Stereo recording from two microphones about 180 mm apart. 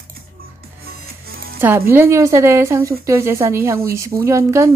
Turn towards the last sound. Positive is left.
turn(degrees=-15)  # may be behind; listen again after turning